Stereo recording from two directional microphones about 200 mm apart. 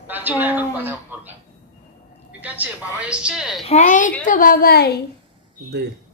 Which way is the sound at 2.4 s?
5° right (ahead or behind).